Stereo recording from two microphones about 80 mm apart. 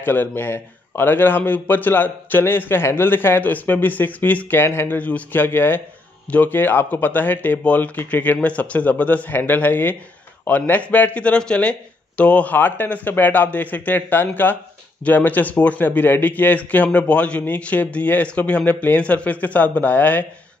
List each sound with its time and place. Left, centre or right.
0.0 s a man's voice: left